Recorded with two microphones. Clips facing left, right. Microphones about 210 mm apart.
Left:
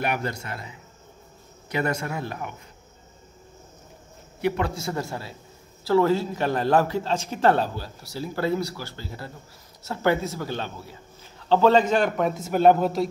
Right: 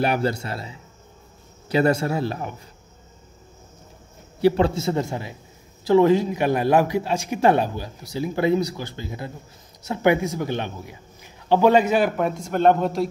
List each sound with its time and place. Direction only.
0.0 s a man's voice: 30° right (ahead or behind)
4.4 s a man's voice: 30° right (ahead or behind); by 13.1 s centre (ahead or behind)